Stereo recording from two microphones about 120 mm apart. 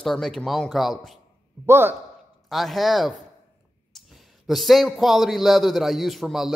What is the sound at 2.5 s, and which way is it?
A man's voice, centre (ahead or behind).